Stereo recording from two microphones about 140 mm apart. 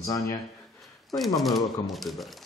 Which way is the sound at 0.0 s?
25° left (ahead or behind).